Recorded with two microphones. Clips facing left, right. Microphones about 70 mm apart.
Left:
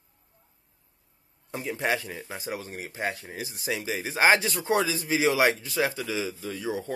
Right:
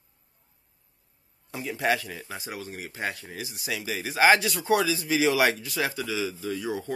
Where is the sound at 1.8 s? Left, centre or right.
Left.